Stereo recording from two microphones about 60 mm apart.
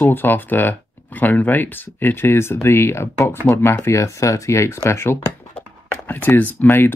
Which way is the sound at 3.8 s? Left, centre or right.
Left.